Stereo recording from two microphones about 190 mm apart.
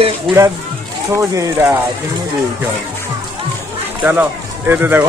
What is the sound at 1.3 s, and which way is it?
Speech, 15° right (ahead or behind).